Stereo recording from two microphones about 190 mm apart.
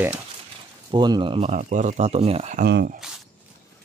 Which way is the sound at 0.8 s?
20° right (ahead or behind).